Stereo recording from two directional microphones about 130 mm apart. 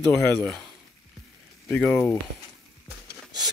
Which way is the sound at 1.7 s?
5° left (ahead or behind).